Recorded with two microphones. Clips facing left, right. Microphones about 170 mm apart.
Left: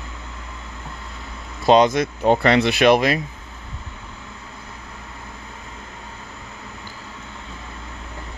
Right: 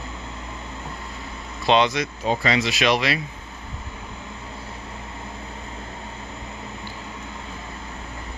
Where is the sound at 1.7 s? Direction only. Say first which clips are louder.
Left 5 dB; 45° left (ahead or behind).